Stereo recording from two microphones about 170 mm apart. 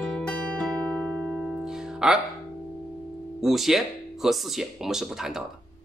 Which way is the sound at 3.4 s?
Centre (ahead or behind).